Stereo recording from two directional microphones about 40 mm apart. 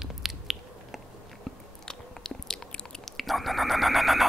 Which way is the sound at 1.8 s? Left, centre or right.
Centre.